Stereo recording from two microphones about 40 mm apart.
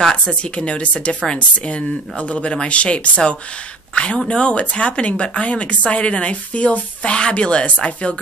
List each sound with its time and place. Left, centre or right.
0.1 s a woman's voice: left